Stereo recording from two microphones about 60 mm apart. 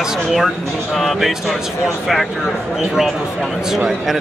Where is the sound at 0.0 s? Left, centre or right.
Centre.